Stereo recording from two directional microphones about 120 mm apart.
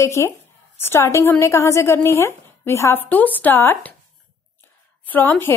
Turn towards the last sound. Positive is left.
turn(degrees=15)  # may be behind; listen again after turning